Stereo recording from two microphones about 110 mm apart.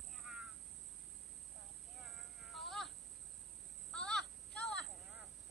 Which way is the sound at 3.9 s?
5° left (ahead or behind).